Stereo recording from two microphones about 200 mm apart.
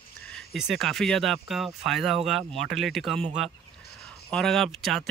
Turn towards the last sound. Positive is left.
turn(degrees=0)  # may be behind; listen again after turning